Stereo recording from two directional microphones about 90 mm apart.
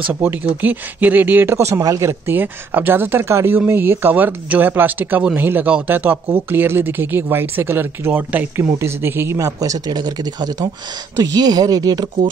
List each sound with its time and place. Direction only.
0.2 s speech: 20° right (ahead or behind)
1.8 s speech: 45° right (ahead or behind)
2.0 s speech: 25° right (ahead or behind)
9.6 s speech: 45° right (ahead or behind)